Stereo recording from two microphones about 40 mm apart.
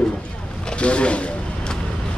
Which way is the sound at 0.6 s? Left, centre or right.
Left.